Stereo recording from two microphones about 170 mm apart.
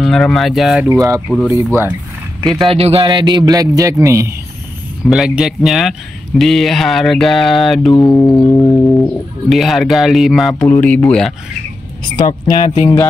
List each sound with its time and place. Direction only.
0.0 s speech: centre (ahead or behind)
0.8 s speech: 20° right (ahead or behind)
2.4 s speech: centre (ahead or behind)
2.7 s speech: 35° right (ahead or behind); by 4.4 s 15° right (ahead or behind)
5.0 s speech: centre (ahead or behind)
12.2 s speech: 25° left (ahead or behind)